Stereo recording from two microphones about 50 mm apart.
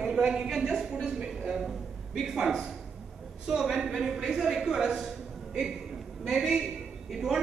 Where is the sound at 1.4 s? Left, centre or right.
Centre.